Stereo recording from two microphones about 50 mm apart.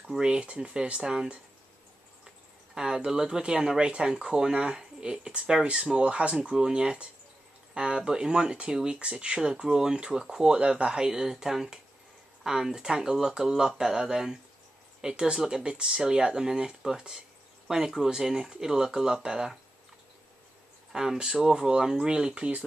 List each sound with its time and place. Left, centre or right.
0.2 s speech: right
2.7 s speech: centre
20.9 s speech: centre